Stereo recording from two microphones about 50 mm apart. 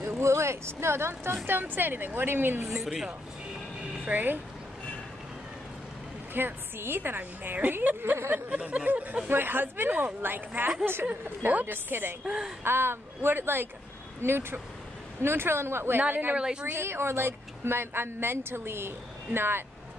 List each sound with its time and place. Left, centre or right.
0.2 s speech: right
1.3 s a woman's voice: right
2.6 s a woman's voice: centre
4.1 s a woman's voice: right
6.3 s a woman's voice: right
8.5 s speech: right
9.3 s a woman's voice: right
12.3 s a woman's voice: centre
12.6 s a woman's voice: right
16.0 s a woman's voice: right
16.7 s a woman's voice: right